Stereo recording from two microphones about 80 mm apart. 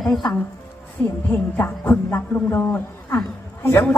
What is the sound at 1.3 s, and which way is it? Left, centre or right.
A man's voice, left.